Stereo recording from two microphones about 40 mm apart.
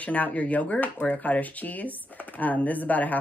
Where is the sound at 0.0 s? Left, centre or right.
Left.